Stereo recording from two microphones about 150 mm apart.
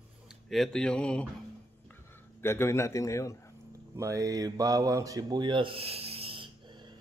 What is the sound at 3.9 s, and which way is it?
Speech, 20° right (ahead or behind).